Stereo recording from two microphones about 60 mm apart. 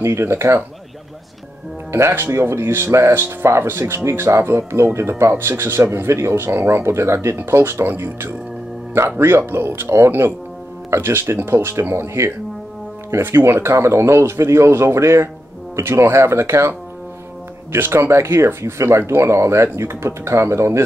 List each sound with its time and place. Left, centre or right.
0.0 s speech: right
1.9 s speech: right
17.7 s speech: right